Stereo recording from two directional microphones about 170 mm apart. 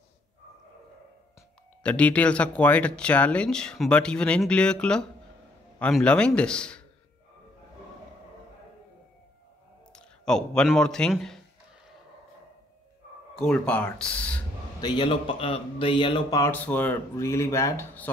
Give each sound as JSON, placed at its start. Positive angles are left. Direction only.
{"t": 1.8, "sound": "a man's voice", "side_deg": 5}
{"t": 9.9, "sound": "a man's voice", "side_deg": 5}
{"t": 13.4, "sound": "speech", "side_deg": 5}
{"t": 14.8, "sound": "a man's voice", "side_deg": 25}